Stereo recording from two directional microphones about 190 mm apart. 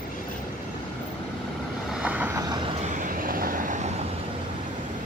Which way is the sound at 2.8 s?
40° right (ahead or behind).